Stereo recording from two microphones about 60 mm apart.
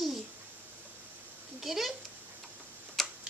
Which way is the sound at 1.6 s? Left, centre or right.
Centre.